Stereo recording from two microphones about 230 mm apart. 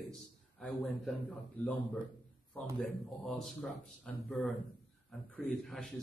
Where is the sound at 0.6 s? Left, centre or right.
Centre.